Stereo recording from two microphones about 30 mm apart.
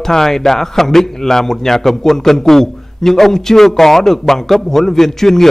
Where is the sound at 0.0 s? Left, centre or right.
Centre.